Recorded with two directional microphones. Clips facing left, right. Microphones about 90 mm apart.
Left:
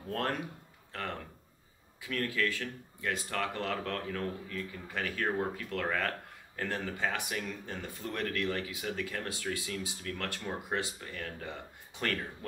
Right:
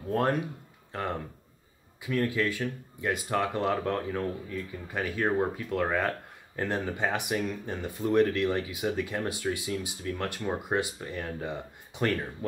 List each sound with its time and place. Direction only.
0.1 s speech: 20° right (ahead or behind)